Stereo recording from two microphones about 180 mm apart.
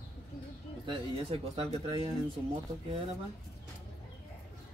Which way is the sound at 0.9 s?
30° right (ahead or behind).